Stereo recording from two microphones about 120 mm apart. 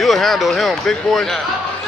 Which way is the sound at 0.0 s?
Centre (ahead or behind).